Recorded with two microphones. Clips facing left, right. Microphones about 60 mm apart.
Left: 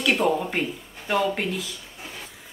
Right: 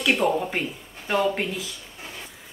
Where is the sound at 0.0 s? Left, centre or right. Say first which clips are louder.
Even; centre.